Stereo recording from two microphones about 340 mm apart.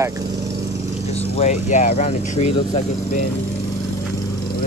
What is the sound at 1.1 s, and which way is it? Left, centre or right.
Speech, centre.